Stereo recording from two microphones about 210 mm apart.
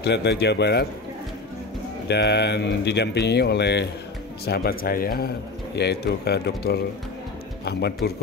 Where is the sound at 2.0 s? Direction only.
50° left (ahead or behind).